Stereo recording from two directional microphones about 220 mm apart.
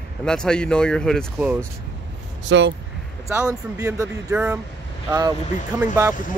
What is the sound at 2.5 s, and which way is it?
Speech, 55° right (ahead or behind).